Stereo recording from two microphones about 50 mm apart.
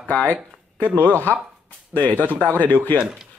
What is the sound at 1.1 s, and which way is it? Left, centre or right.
Speech, left.